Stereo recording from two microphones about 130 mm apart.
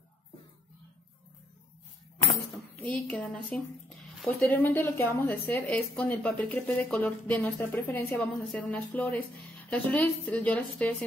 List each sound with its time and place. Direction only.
2.7 s a woman's voice: 10° left (ahead or behind)